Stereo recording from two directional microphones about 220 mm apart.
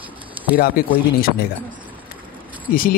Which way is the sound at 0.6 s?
40° left (ahead or behind).